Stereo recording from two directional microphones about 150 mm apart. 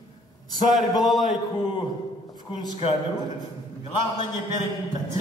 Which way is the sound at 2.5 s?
30° left (ahead or behind).